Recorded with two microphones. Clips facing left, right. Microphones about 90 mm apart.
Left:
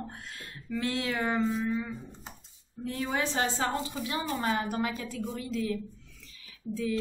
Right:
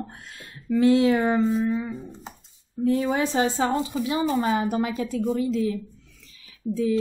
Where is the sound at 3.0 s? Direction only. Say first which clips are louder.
Right 7 dB; 20° right (ahead or behind).